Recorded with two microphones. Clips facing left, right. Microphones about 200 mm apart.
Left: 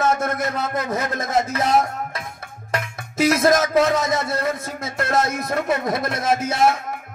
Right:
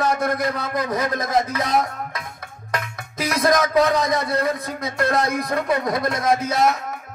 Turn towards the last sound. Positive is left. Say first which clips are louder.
# even
turn(degrees=25)  # may be behind; listen again after turning